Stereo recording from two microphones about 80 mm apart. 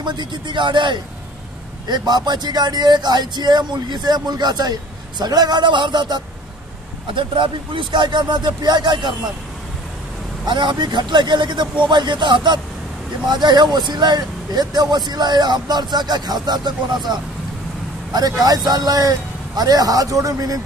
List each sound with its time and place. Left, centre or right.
0.0 s speech: right
1.9 s speech: right
7.2 s speech: right
10.4 s speech: right
18.4 s a man's voice: right